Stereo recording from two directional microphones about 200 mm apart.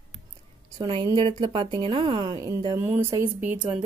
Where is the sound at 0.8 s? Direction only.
20° right (ahead or behind).